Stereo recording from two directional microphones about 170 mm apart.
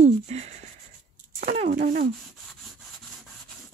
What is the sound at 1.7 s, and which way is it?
Speech, 55° right (ahead or behind).